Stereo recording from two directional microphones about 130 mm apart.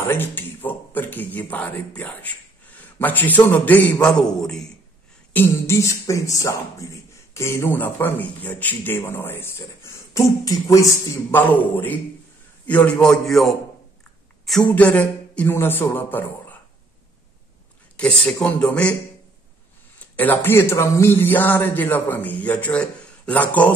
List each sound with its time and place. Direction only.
0.1 s speech: 15° left (ahead or behind)
5.3 s speech: 20° left (ahead or behind)
11.3 s a man's voice: 15° left (ahead or behind)
14.5 s a sound: centre (ahead or behind)
14.8 s speech: 10° left (ahead or behind)
17.9 s speech: 10° left (ahead or behind)
20.2 s speech: 15° left (ahead or behind)